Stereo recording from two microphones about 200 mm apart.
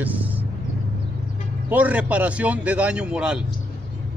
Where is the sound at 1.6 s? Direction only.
5° right (ahead or behind).